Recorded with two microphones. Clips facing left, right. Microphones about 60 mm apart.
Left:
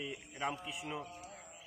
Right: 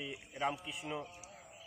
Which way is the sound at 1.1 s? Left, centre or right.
Left.